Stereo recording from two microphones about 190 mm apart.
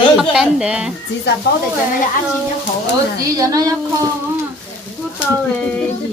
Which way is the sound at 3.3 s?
20° right (ahead or behind).